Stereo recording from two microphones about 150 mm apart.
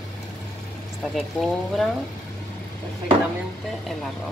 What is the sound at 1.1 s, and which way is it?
Speech, centre (ahead or behind).